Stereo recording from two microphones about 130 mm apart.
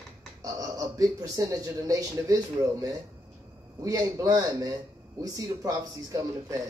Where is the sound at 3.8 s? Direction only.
25° right (ahead or behind).